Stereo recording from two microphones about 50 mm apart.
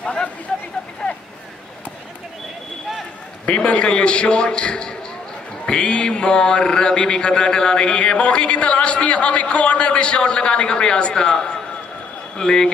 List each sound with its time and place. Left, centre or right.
0.0 s a sound: left
1.0 s vehicle: left
3.4 s mantra: left
12.4 s a man's voice: centre